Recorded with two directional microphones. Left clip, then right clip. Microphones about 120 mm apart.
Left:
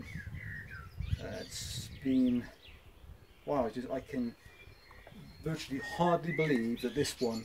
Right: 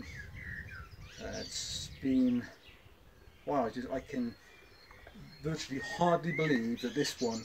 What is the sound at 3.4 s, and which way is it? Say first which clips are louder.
Speech: even; 20° left (ahead or behind).